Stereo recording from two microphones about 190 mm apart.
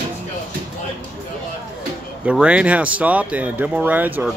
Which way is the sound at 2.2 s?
5° right (ahead or behind).